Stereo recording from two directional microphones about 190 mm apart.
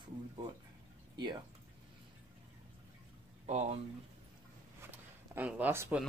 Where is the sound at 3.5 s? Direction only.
35° right (ahead or behind).